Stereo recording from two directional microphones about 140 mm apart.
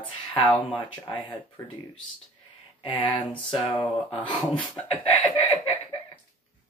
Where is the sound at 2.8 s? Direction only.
40° left (ahead or behind).